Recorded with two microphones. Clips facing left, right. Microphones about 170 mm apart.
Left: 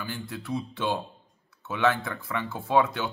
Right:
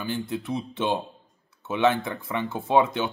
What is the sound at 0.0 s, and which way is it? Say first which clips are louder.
A man's voice: right 6 dB; 20° right (ahead or behind).